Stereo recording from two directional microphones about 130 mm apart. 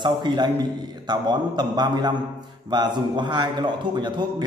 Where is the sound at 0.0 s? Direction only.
35° right (ahead or behind).